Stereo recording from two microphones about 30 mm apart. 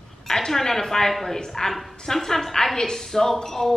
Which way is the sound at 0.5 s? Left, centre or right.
Centre.